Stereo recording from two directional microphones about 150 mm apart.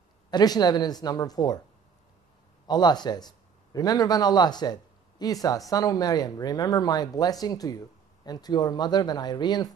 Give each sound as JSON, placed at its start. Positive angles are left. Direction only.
{"t": 0.3, "sound": "speech", "side_deg": 25}
{"t": 2.6, "sound": "a man's voice", "side_deg": 25}